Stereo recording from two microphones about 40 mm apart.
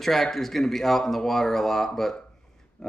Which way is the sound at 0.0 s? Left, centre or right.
Centre.